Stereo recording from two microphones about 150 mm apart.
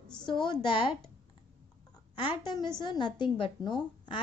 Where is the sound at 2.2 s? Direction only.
30° left (ahead or behind).